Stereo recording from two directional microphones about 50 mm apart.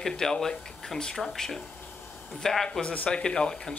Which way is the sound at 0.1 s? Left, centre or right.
Centre.